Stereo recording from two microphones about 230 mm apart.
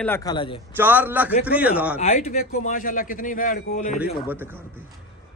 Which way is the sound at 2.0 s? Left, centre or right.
Left.